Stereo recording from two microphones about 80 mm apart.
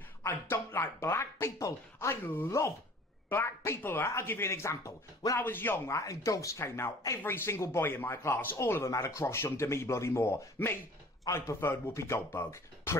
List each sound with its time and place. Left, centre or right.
0.3 s speech: left
5.4 s speech: left
5.9 s speech: left
7.2 s speech: left